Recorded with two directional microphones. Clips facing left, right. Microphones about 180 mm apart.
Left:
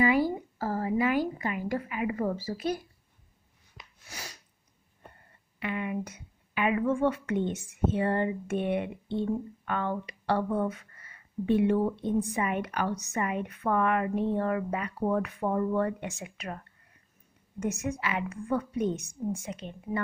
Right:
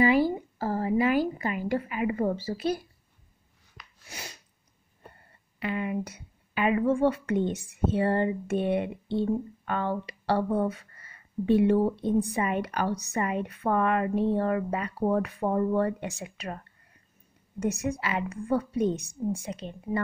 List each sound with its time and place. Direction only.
0.0 s a woman's voice: 25° right (ahead or behind)
4.1 s a woman's voice: 20° right (ahead or behind)
5.6 s a woman's voice: 35° right (ahead or behind)